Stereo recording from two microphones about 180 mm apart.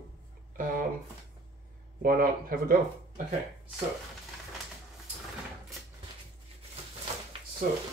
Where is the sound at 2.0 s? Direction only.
55° right (ahead or behind).